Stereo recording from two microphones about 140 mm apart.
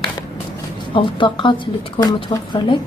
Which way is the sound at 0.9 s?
35° left (ahead or behind).